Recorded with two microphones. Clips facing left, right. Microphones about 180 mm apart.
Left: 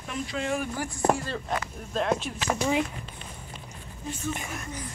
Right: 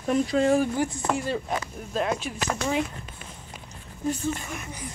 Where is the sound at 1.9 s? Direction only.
5° right (ahead or behind).